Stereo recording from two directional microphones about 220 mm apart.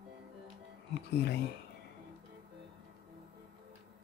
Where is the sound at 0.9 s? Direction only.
50° left (ahead or behind).